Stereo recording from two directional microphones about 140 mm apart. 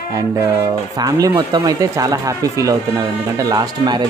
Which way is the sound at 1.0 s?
30° right (ahead or behind).